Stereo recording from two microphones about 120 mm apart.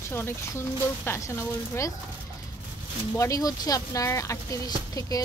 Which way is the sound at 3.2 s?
30° left (ahead or behind).